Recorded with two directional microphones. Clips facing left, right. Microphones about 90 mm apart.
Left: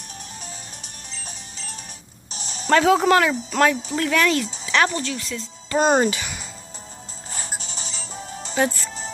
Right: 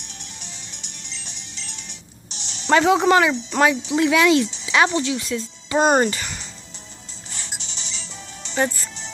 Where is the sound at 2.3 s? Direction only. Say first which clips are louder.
Left 5 dB; 40° left (ahead or behind).